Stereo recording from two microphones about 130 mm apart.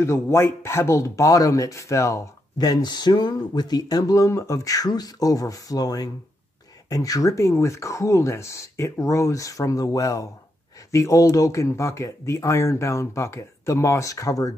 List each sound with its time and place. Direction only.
0.0 s speech: 20° left (ahead or behind)